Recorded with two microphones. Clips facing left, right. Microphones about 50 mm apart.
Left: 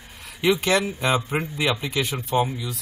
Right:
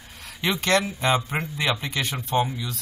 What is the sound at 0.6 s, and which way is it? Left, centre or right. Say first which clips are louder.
Speech: even; centre.